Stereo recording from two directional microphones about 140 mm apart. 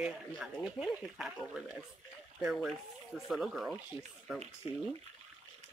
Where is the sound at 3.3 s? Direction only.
Centre (ahead or behind).